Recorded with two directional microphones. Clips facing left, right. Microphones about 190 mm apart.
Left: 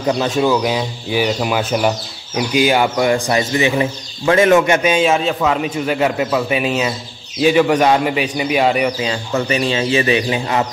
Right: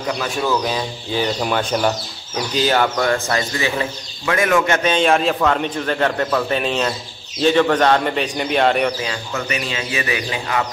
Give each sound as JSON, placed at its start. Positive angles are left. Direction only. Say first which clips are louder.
{"t": 0.1, "sound": "speech", "louder": "left 7 dB", "side_deg": 25}
{"t": 0.5, "sound": "speech", "louder": "left 4 dB", "side_deg": 10}
{"t": 4.7, "sound": "speech", "louder": "left 2 dB", "side_deg": 10}
{"t": 9.0, "sound": "speech", "louder": "left 6 dB", "side_deg": 30}